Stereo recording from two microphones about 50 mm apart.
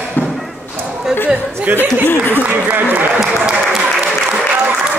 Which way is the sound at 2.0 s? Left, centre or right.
Left.